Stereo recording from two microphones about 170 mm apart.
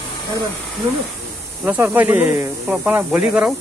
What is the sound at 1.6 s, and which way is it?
Speech, 10° right (ahead or behind).